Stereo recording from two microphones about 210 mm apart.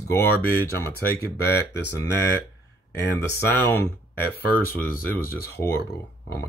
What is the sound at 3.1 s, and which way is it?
Speech, 10° left (ahead or behind).